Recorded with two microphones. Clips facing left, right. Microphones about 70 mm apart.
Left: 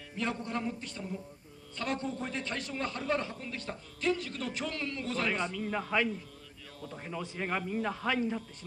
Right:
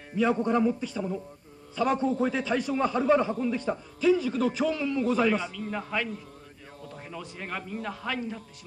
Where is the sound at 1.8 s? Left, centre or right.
Centre.